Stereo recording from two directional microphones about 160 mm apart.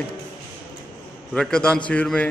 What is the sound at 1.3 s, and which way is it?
Speech, 5° left (ahead or behind).